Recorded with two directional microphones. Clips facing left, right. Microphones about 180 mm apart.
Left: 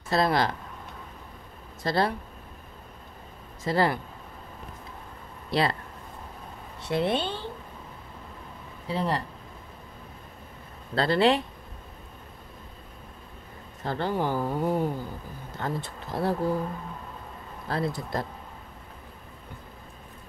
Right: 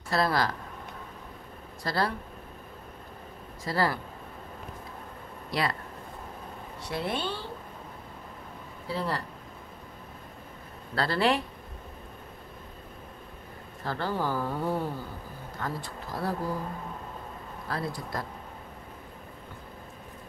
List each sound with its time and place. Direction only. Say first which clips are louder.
0.1 s speech: left 3 dB; 20° left (ahead or behind)
1.8 s speech: left 4 dB; 25° left (ahead or behind)
3.6 s speech: left 3 dB; 20° left (ahead or behind)
5.5 s speech: left 4 dB; 25° left (ahead or behind)
6.8 s speech: left 6 dB; 25° left (ahead or behind)
8.8 s speech: left 3 dB; 20° left (ahead or behind)
11.0 s speech: left 4 dB; 20° left (ahead or behind)
13.8 s speech: left 3 dB; 20° left (ahead or behind)
15.6 s speech: left 3 dB; 25° left (ahead or behind)
17.6 s speech: left 5 dB; 25° left (ahead or behind)